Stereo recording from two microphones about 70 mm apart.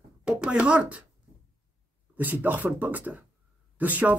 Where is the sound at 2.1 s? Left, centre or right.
Right.